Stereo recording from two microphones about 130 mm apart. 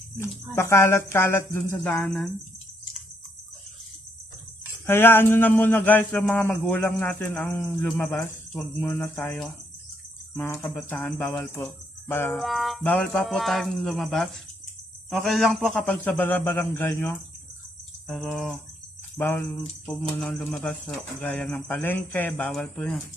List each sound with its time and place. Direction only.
0.2 s speech: 20° left (ahead or behind)
1.8 s speech: 5° left (ahead or behind)
4.8 s speech: 15° left (ahead or behind)
12.3 s speech: centre (ahead or behind); by 17.2 s 20° left (ahead or behind)
18.0 s speech: centre (ahead or behind)
19.1 s speech: 20° left (ahead or behind)
20.0 s speech: 5° left (ahead or behind)